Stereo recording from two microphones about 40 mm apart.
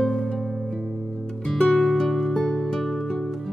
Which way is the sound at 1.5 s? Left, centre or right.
Centre.